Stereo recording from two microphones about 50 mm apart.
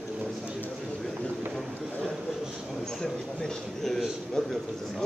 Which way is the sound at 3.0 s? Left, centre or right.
Centre.